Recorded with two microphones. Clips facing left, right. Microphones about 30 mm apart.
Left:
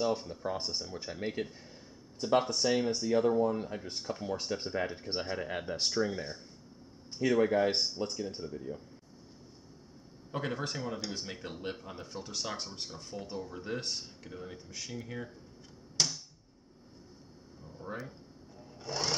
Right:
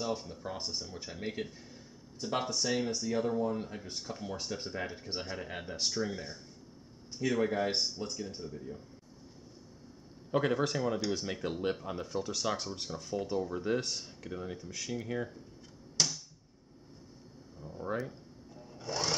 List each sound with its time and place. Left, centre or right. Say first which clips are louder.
0.0 s speech: left 4 dB; centre
3.8 s speech: left 3 dB; centre
10.3 s speech: right 6 dB; centre
12.1 s speech: right 4 dB; centre
14.2 s speech: right 4 dB; centre
14.6 s speech: right 4 dB; centre
15.0 s speech: right 6 dB; centre
16.0 s a sound: even; centre
17.6 s speech: right 6 dB; centre
18.6 s sewing machine: right 1 dB; centre